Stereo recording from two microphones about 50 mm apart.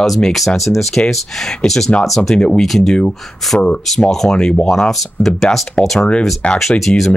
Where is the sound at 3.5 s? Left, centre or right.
Centre.